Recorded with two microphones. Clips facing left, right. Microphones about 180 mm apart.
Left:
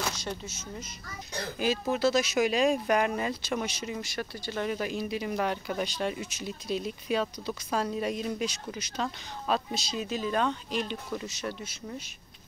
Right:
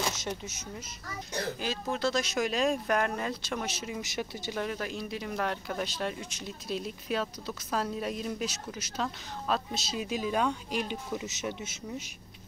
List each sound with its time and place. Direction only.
0.1 s speech: 20° right (ahead or behind)
1.6 s speech: 10° left (ahead or behind)
4.0 s speech: 20° right (ahead or behind)
4.6 s speech: 5° left (ahead or behind); by 11.5 s 15° right (ahead or behind)